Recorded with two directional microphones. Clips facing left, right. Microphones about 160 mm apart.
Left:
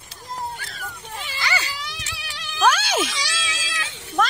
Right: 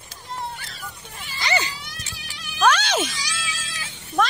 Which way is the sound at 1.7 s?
90° left.